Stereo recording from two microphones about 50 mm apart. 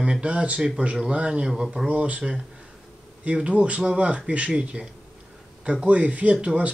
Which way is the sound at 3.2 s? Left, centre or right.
Right.